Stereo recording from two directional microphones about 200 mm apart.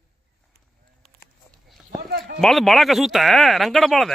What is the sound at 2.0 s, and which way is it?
Clip-clop, 50° right (ahead or behind).